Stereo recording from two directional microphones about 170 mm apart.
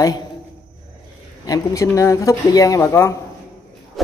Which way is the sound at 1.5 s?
20° left (ahead or behind).